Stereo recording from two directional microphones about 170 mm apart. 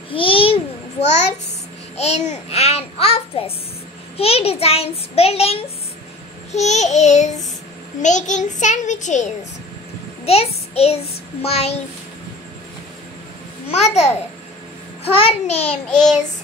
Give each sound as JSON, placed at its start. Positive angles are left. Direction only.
{"t": 0.1, "sound": "babbling", "side_deg": 30}
{"t": 1.0, "sound": "a child's voice", "side_deg": 40}
{"t": 10.2, "sound": "child singing", "side_deg": 35}
{"t": 11.4, "sound": "a child's voice", "side_deg": 40}
{"t": 13.7, "sound": "a child's voice", "side_deg": 40}